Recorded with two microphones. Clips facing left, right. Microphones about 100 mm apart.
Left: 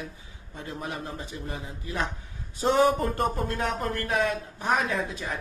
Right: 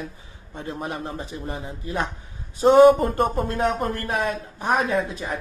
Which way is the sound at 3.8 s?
45° right (ahead or behind).